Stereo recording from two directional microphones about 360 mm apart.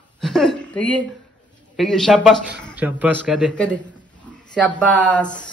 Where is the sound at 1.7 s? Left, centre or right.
Centre.